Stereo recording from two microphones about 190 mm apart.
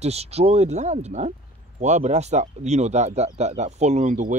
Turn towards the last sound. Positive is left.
turn(degrees=-40)  # may be behind; listen again after turning